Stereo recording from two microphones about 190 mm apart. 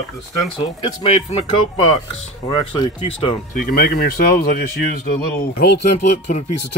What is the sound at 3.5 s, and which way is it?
Speech, 50° left (ahead or behind).